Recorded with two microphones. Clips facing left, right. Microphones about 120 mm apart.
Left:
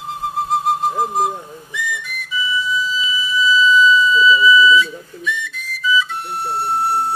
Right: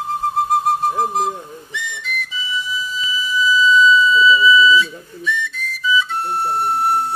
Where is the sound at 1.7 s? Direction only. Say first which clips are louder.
Left 3 dB; 70° right (ahead or behind).